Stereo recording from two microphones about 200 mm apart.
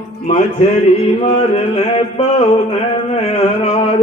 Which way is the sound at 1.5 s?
30° left (ahead or behind).